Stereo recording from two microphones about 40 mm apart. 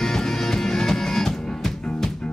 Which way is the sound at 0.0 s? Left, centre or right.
Centre.